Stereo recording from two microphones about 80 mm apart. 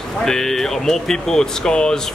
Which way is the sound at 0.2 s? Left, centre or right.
Centre.